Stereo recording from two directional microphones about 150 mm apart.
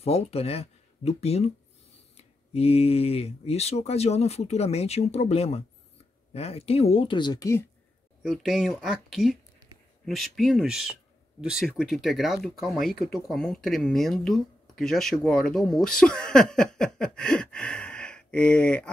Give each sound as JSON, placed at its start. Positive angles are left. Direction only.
{"t": 0.0, "sound": "speech", "side_deg": 45}
{"t": 8.2, "sound": "speech", "side_deg": 0}